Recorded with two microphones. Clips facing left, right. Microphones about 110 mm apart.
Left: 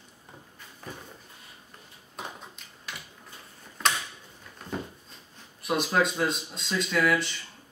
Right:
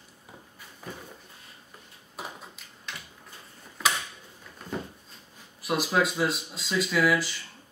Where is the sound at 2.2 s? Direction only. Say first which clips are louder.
Even; centre (ahead or behind).